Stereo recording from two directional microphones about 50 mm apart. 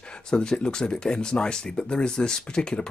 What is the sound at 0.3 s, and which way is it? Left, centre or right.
Speech, centre.